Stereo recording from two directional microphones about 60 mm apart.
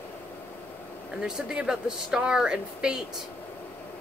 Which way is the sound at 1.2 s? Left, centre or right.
Centre.